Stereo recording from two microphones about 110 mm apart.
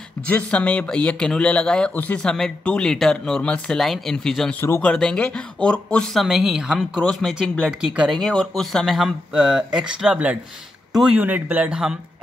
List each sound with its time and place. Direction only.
0.3 s speech: 10° left (ahead or behind)
4.6 s speech: 20° left (ahead or behind)
4.8 s speech: 10° left (ahead or behind)
6.2 s speech: 5° right (ahead or behind)
8.2 s speech: 5° left (ahead or behind)
11.1 s speech: 15° right (ahead or behind)